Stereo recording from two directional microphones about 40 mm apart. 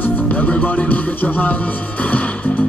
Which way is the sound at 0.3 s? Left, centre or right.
Left.